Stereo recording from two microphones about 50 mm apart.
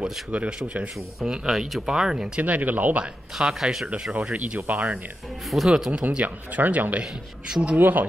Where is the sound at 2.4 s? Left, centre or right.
Right.